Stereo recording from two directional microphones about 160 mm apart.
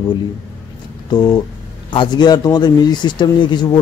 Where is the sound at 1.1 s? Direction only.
25° left (ahead or behind).